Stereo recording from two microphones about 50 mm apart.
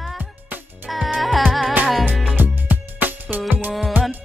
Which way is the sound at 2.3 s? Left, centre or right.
Right.